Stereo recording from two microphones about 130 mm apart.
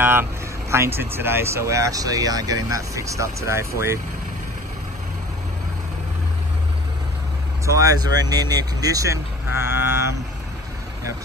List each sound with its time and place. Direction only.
0.0 s speech: 15° right (ahead or behind)
7.6 s speech: 25° right (ahead or behind)